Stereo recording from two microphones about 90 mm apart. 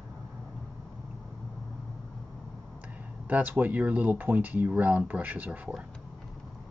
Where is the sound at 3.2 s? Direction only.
15° right (ahead or behind).